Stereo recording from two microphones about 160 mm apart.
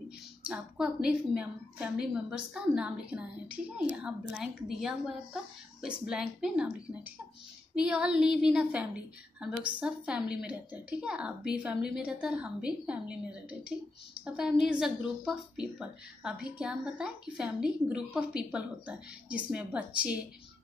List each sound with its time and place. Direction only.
0.5 s a woman's voice: 5° right (ahead or behind)
7.7 s a woman's voice: 5° right (ahead or behind)